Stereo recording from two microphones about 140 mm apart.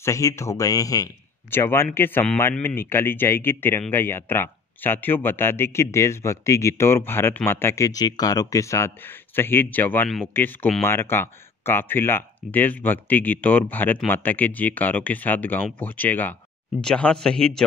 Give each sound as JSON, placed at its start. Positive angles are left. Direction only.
{"t": 0.0, "sound": "speech", "side_deg": 20}
{"t": 10.0, "sound": "a man's voice", "side_deg": 0}
{"t": 10.3, "sound": "a man's voice", "side_deg": 15}